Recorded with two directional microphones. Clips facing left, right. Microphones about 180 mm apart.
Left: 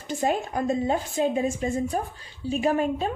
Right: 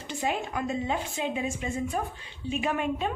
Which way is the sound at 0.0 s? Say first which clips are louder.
Left 5 dB; 40° left (ahead or behind).